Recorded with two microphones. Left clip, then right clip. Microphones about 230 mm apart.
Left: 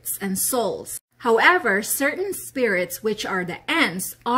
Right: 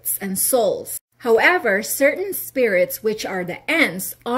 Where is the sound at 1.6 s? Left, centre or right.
Centre.